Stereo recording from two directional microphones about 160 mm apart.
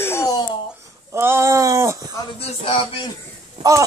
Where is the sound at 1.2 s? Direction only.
15° right (ahead or behind).